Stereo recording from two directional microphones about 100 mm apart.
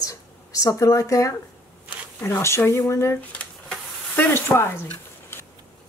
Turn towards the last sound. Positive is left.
turn(degrees=20)  # may be behind; listen again after turning